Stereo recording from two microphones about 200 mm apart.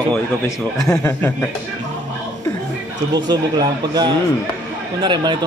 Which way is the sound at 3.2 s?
20° right (ahead or behind).